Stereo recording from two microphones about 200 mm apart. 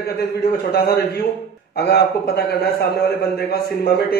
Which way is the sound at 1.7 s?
55° left (ahead or behind).